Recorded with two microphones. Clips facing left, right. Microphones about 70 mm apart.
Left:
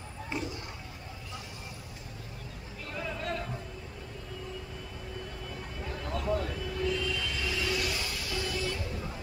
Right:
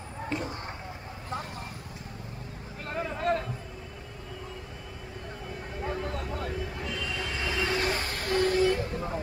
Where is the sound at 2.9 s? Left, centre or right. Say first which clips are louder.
Right 7 dB; right.